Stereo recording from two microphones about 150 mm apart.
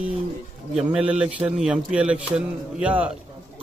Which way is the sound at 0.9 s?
5° right (ahead or behind).